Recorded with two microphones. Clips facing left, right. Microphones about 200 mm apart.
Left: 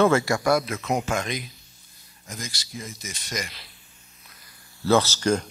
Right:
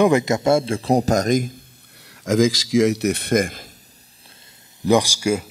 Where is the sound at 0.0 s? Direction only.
20° right (ahead or behind); by 1.6 s 45° right (ahead or behind).